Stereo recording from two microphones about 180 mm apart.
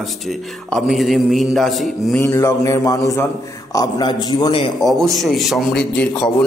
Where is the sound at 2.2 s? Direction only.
15° left (ahead or behind).